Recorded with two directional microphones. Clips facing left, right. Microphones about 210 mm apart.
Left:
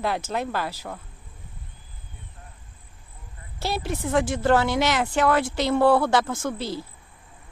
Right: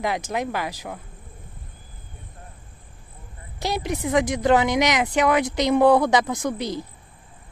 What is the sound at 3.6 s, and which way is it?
Speech, 15° right (ahead or behind).